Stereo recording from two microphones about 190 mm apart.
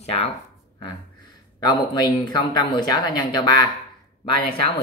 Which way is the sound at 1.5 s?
20° left (ahead or behind).